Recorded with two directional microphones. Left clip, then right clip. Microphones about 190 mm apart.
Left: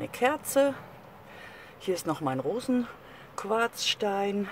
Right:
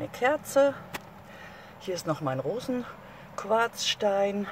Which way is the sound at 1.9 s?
15° left (ahead or behind).